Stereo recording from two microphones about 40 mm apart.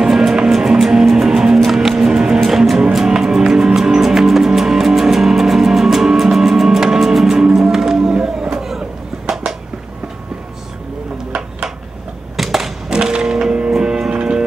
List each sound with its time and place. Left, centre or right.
0.0 s music: centre
2.4 s music: centre
12.4 s typewriter: centre
12.9 s music: right